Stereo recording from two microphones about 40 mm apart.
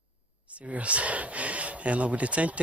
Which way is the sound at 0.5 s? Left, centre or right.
Right.